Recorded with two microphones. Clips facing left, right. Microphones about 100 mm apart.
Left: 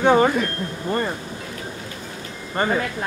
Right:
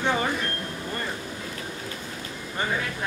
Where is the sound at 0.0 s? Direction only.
60° left (ahead or behind).